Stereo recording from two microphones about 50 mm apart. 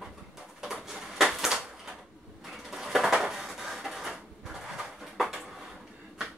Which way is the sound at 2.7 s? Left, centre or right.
Centre.